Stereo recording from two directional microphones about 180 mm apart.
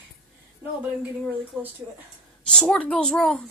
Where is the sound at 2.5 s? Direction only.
5° left (ahead or behind).